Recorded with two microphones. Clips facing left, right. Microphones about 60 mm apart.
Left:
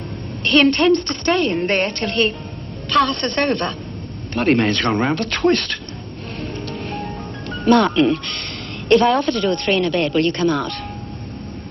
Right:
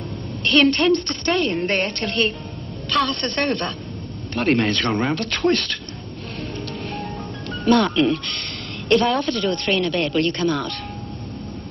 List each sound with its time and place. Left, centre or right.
0.4 s a woman's voice: left
6.9 s speech: left